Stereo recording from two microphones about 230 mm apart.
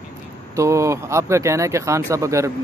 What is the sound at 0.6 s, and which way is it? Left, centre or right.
Speech, centre.